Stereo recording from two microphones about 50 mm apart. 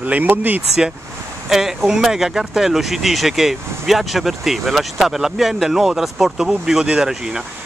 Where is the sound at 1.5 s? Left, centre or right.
Centre.